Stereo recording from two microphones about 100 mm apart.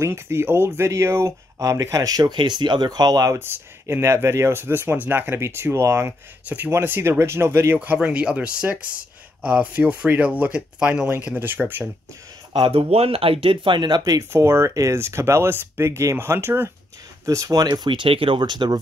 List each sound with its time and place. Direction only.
0.0 s speech: 25° right (ahead or behind)
3.3 s speech: 25° right (ahead or behind)
12.5 s speech: 65° right (ahead or behind); by 14.2 s 45° right (ahead or behind)
14.3 s speech: 30° right (ahead or behind)
17.3 s speech: 35° right (ahead or behind)